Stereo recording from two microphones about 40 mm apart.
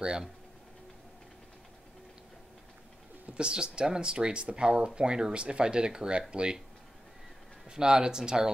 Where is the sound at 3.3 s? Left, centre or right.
Right.